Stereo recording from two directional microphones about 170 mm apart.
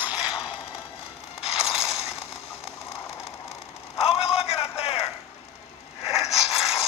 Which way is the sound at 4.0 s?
35° left (ahead or behind).